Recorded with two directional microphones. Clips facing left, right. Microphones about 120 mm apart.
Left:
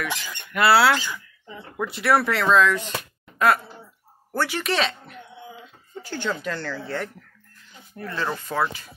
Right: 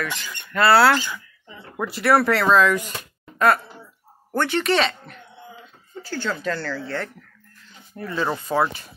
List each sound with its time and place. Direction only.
0.0 s speech: 10° left (ahead or behind)
6.0 s speech: 15° left (ahead or behind)
8.0 s speech: 10° right (ahead or behind)